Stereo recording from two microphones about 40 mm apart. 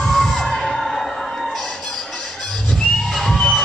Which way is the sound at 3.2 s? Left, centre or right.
Centre.